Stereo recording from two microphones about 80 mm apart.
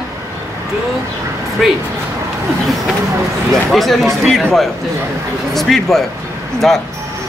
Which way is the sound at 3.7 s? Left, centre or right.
Centre.